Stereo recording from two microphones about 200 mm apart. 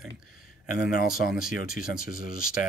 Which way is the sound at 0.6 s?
45° left (ahead or behind).